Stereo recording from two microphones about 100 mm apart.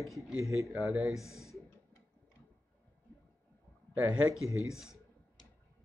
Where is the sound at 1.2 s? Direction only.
30° left (ahead or behind).